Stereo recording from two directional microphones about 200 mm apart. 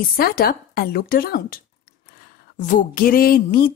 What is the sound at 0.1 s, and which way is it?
Speech, 45° left (ahead or behind).